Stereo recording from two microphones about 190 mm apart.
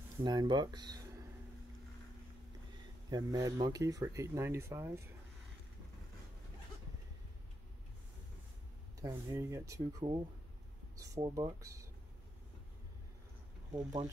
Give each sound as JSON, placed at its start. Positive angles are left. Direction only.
{"t": 0.2, "sound": "speech", "side_deg": -20}
{"t": 3.1, "sound": "speech", "side_deg": -20}
{"t": 9.0, "sound": "speech", "side_deg": -15}
{"t": 13.7, "sound": "speech", "side_deg": -20}